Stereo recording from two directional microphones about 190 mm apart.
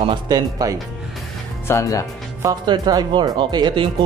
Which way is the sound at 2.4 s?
25° right (ahead or behind).